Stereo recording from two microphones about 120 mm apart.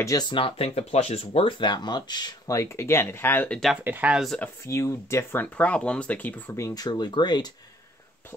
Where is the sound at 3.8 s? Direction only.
15° right (ahead or behind).